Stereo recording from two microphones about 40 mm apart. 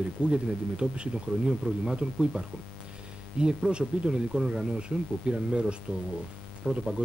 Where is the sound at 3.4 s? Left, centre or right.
Right.